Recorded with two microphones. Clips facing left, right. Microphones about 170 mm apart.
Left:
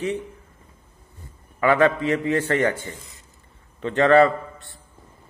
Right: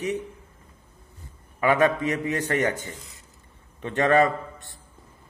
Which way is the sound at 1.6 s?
15° right (ahead or behind).